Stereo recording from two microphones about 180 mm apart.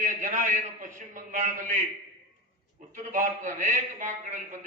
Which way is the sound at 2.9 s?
45° right (ahead or behind).